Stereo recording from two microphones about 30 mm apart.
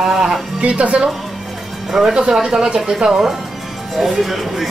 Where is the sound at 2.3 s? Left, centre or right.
Centre.